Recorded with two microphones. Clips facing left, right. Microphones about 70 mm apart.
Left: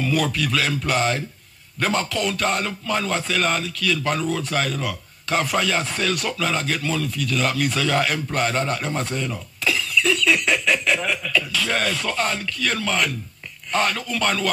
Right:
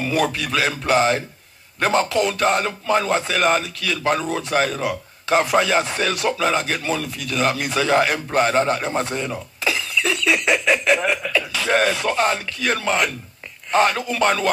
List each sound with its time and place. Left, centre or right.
0.0 s a man's voice: right